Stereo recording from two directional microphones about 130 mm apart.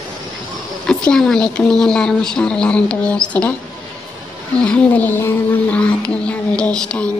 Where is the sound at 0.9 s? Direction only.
5° left (ahead or behind).